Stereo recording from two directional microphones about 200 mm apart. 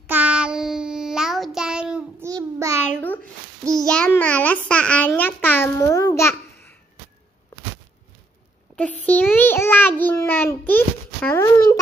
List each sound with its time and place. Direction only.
0.0 s child singing: 10° right (ahead or behind)
2.2 s child singing: 15° right (ahead or behind)
3.7 s a child's voice: 5° left (ahead or behind)
9.0 s child singing: 10° left (ahead or behind)